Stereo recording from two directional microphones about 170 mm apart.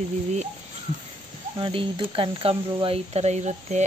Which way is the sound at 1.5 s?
30° right (ahead or behind).